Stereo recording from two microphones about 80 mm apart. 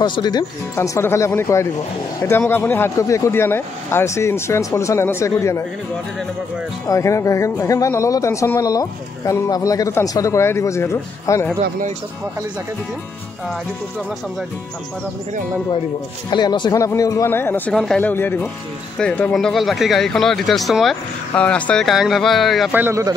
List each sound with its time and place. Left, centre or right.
0.0 s speech: left
0.7 s speech: left
6.9 s speech: left
16.3 s speech: left
16.7 s speech: left
17.3 s speech: left
17.7 s speech: centre
18.0 s speech: left
18.9 s speech: centre
19.3 s speech: centre
21.4 s speech: centre
21.8 s speech: centre
22.7 s speech: right